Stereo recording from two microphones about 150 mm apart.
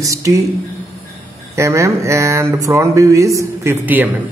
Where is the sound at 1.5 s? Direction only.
20° right (ahead or behind).